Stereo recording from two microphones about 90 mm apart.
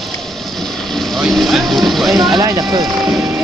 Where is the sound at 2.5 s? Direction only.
35° right (ahead or behind).